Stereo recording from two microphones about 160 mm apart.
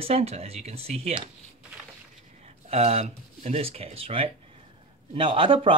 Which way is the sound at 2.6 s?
40° right (ahead or behind).